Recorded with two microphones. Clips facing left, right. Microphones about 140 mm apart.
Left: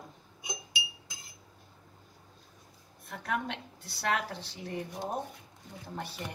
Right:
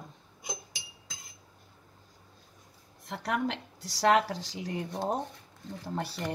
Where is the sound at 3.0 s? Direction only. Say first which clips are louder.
Right 4 dB; 85° right.